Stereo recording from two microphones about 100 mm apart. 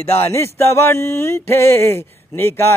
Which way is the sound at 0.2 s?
25° left (ahead or behind).